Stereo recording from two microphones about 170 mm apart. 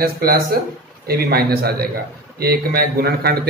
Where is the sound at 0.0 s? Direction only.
65° right (ahead or behind).